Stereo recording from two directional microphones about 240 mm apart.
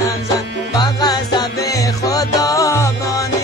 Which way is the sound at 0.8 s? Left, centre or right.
Centre.